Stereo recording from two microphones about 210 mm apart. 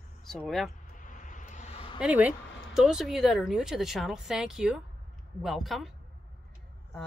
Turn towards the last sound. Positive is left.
turn(degrees=0)  # may be behind; listen again after turning